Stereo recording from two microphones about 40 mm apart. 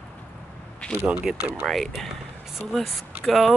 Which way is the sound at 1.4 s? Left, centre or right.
Right.